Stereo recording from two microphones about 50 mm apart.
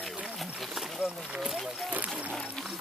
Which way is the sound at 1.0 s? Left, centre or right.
Centre.